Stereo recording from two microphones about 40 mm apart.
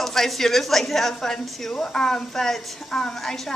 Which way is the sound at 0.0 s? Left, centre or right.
Centre.